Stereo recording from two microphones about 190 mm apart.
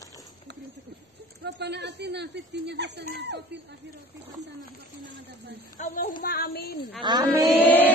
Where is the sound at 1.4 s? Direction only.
65° right (ahead or behind).